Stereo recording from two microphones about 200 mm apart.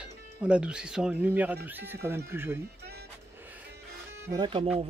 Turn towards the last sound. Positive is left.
turn(degrees=-25)  # may be behind; listen again after turning